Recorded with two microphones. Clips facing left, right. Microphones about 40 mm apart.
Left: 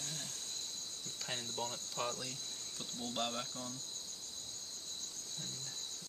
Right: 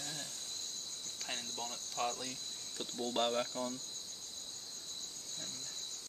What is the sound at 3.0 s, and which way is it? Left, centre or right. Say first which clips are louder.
Speech: right 6 dB; centre.